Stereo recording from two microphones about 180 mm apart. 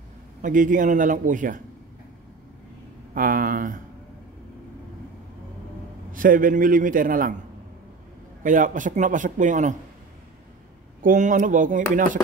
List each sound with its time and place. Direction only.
0.4 s speech: 45° right (ahead or behind)
3.2 s speech: 50° right (ahead or behind)
6.1 s speech: 50° right (ahead or behind)
8.5 s speech: 45° right (ahead or behind)
11.0 s speech: 45° right (ahead or behind)